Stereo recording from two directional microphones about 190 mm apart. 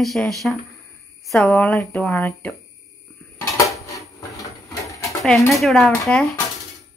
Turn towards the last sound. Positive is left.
turn(degrees=0)  # may be behind; listen again after turning